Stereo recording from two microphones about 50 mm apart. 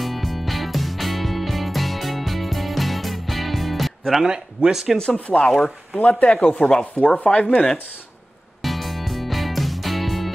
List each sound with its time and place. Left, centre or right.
0.0 s music: centre
4.3 s speech: centre
4.9 s speech: centre
5.9 s speech: left
8.6 s music: centre